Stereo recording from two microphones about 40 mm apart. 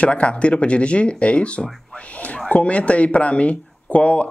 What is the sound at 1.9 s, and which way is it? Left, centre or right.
Whispering, left.